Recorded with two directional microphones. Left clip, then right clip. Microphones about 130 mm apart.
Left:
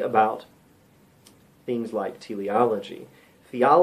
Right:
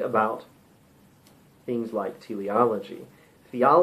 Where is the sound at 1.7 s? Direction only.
20° left (ahead or behind).